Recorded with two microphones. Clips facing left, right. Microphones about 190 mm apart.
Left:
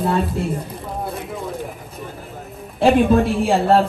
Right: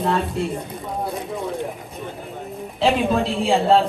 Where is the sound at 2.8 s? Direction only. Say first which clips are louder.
Left 5 dB; 55° left (ahead or behind).